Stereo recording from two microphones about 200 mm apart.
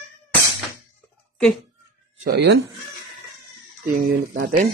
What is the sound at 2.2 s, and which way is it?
Speech, 50° right (ahead or behind).